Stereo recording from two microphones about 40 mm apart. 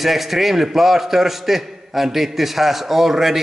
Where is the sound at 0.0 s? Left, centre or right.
Centre.